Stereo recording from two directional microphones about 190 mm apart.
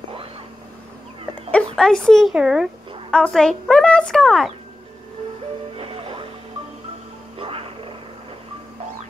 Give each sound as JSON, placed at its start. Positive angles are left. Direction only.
{"t": 1.8, "sound": "speech", "side_deg": 5}
{"t": 5.8, "sound": "music", "side_deg": -30}
{"t": 7.3, "sound": "music", "side_deg": -30}